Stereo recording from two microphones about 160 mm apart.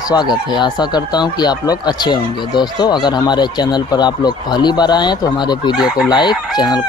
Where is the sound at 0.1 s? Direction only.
25° left (ahead or behind).